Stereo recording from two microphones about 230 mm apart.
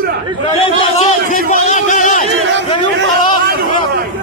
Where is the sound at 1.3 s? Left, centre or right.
Left.